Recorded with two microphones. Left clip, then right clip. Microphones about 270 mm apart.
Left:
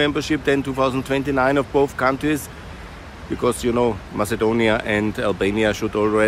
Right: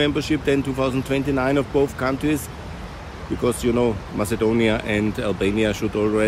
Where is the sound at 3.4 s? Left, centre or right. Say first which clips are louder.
Left 1 dB; centre.